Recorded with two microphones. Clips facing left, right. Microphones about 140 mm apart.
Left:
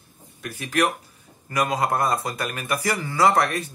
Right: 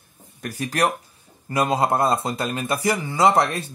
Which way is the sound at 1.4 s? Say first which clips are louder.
Right 3 dB; 25° right (ahead or behind).